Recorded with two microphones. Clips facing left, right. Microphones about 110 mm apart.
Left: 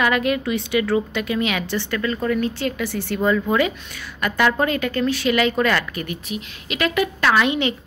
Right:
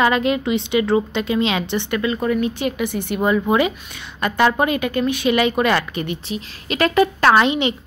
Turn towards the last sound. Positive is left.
turn(degrees=-20)  # may be behind; listen again after turning